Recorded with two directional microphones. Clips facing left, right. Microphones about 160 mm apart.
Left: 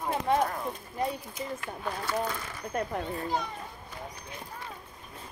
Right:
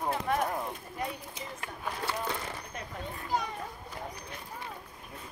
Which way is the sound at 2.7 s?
55° left (ahead or behind).